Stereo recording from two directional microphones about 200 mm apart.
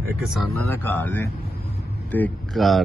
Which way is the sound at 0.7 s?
10° left (ahead or behind).